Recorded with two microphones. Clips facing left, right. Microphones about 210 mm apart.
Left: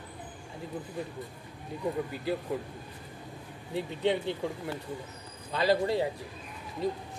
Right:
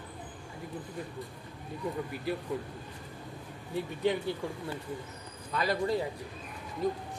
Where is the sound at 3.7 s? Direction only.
20° left (ahead or behind).